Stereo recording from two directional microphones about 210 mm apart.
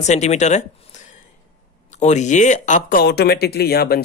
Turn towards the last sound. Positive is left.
turn(degrees=50)  # may be behind; listen again after turning